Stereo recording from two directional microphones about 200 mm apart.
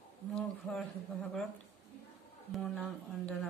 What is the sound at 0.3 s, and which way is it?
Speech, 5° left (ahead or behind).